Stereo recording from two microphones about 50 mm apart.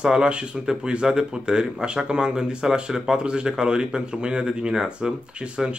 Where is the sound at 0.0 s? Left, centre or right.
Centre.